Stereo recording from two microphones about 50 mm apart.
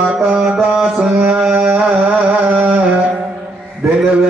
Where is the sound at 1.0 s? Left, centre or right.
Right.